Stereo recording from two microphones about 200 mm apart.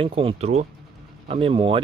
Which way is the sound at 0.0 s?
25° right (ahead or behind).